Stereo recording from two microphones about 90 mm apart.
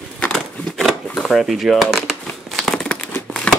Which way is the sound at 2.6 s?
5° left (ahead or behind).